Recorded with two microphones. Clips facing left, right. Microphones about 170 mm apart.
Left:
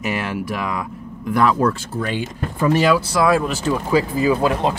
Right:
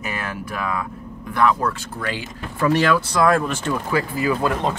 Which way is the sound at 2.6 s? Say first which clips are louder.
Left 2 dB; 10° left (ahead or behind).